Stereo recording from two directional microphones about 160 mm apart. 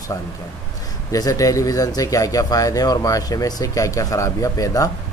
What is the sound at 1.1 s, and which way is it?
Speech, 20° left (ahead or behind).